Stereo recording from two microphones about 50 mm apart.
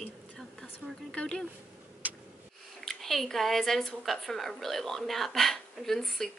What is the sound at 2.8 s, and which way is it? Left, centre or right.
A woman's voice, centre.